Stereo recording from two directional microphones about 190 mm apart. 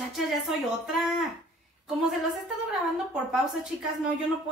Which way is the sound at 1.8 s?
Centre (ahead or behind).